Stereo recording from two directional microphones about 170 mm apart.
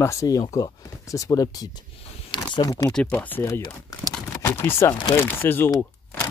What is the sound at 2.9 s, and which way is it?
Speech, 10° left (ahead or behind).